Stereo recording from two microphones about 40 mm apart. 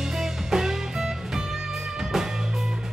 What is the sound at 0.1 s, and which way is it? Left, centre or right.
Music, centre.